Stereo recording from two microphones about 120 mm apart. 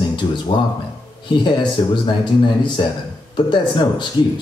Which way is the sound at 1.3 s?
40° left (ahead or behind).